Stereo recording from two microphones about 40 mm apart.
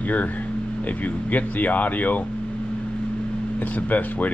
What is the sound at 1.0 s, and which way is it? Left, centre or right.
Speech, left.